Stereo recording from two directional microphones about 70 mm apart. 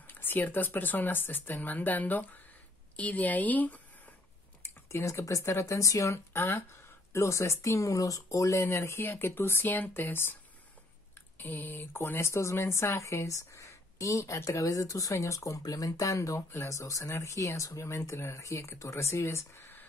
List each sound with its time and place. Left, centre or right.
0.0 s speech: left
4.6 s typing: left
5.2 s speech: left
11.3 s speech: left